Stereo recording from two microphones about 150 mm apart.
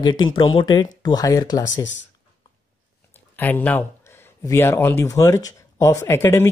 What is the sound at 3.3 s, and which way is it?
Speech, 10° left (ahead or behind).